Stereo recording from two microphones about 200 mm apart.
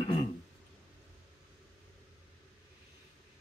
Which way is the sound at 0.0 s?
25° left (ahead or behind).